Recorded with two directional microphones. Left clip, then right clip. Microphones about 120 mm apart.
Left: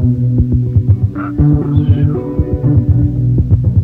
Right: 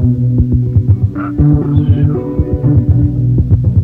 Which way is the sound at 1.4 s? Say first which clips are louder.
Right 1 dB; 20° left (ahead or behind).